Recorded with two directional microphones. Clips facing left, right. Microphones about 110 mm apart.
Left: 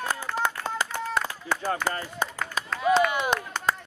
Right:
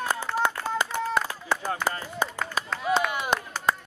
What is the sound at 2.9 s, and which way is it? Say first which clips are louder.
Chop: left 2 dB; centre (ahead or behind).